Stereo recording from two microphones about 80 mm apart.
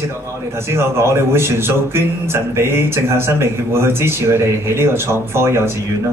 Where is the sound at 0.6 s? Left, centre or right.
Right.